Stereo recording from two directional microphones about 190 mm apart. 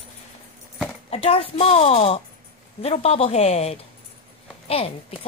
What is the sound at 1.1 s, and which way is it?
A woman's voice, 30° left (ahead or behind).